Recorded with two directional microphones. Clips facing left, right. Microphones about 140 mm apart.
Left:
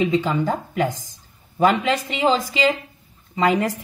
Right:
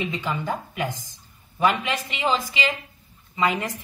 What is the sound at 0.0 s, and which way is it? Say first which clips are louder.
A woman's voice: left 8 dB; 45° left (ahead or behind).